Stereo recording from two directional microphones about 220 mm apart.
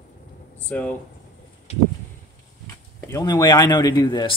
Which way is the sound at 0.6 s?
5° left (ahead or behind).